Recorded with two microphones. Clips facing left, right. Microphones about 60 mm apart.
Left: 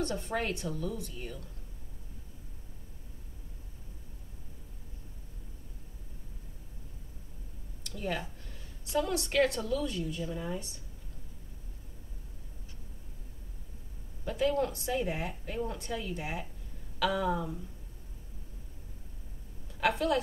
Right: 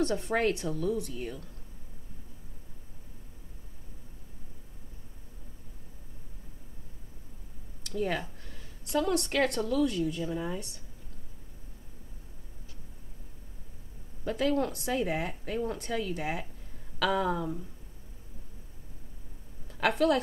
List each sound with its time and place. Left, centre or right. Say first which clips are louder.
0.0 s speech: right 5 dB; right
7.8 s a woman's voice: right 4 dB; right
14.6 s a woman's voice: right 1 dB; right
15.8 s a woman's voice: right 4 dB; right
19.8 s a woman's voice: right 3 dB; right